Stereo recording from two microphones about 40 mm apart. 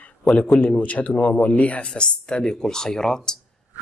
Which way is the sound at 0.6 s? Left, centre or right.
Left.